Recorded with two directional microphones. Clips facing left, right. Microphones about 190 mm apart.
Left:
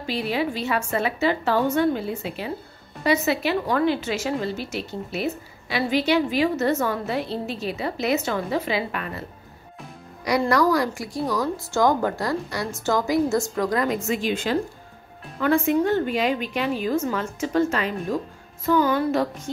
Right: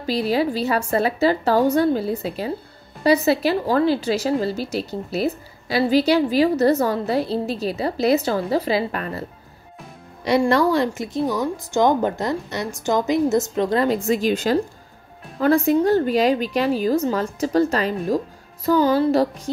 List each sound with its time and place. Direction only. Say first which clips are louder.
0.0 s a woman's voice: right 5 dB; 35° right (ahead or behind)
10.5 s a woman's voice: right 2 dB; 25° right (ahead or behind)